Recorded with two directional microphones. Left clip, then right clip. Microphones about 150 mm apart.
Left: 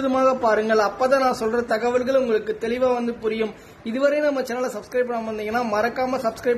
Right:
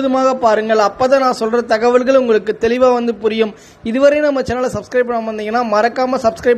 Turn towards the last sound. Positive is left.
turn(degrees=-30)  # may be behind; listen again after turning